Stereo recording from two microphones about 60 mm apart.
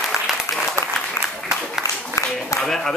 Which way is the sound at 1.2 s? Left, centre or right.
Left.